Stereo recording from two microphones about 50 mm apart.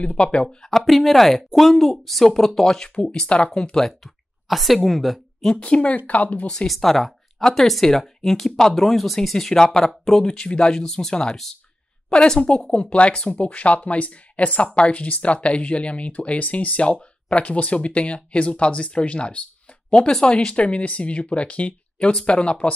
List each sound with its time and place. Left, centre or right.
0.0 s speech: left
0.5 s speech: centre
5.6 s speech: left
6.7 s speech: centre; by 19.4 s left
19.9 s speech: centre